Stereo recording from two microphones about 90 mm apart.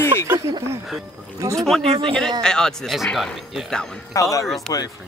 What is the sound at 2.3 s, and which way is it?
Speech, 5° left (ahead or behind).